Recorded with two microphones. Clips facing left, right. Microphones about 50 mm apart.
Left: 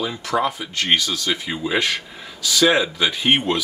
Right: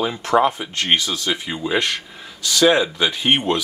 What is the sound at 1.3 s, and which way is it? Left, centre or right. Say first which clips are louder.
Speech: right 1 dB; centre.